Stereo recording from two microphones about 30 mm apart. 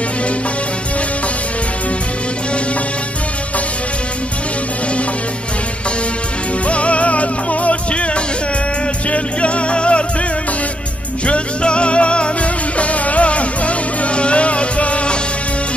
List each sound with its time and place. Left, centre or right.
6.7 s music: left
11.2 s music: left